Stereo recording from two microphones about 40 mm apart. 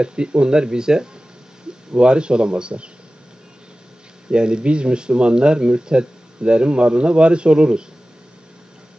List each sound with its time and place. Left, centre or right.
0.0 s speech: right
4.3 s speech: right